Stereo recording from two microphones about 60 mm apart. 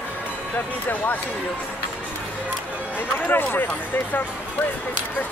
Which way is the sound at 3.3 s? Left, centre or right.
Left.